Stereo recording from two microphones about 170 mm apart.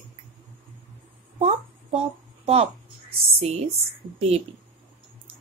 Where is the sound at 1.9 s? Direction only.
35° right (ahead or behind).